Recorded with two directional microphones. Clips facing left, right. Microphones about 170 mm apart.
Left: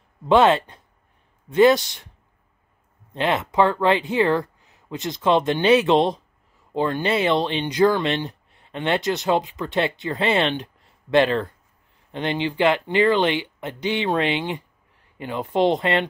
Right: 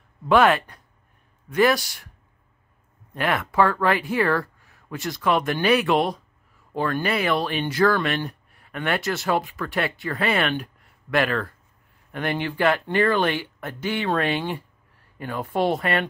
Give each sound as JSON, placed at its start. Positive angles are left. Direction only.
{"t": 0.2, "sound": "speech", "side_deg": 20}
{"t": 3.1, "sound": "speech", "side_deg": 20}